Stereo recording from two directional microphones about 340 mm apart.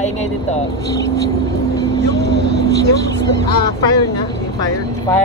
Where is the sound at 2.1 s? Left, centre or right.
Left.